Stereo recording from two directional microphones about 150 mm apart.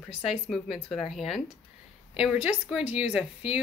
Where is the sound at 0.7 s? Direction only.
10° left (ahead or behind).